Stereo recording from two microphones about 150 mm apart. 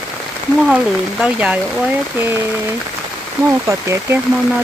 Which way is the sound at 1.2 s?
10° right (ahead or behind).